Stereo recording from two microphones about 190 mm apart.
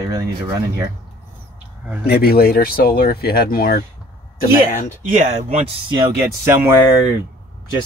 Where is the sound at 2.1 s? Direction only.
55° left (ahead or behind).